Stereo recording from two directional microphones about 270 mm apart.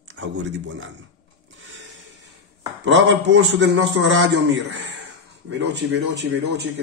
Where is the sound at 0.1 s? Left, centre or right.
Right.